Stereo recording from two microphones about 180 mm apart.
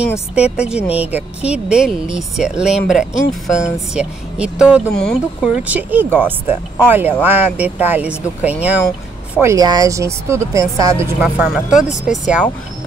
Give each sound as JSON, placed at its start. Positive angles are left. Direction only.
{"t": 0.3, "sound": "a woman's voice", "side_deg": -5}
{"t": 11.1, "sound": "a woman's voice", "side_deg": -5}
{"t": 11.9, "sound": "speech", "side_deg": 40}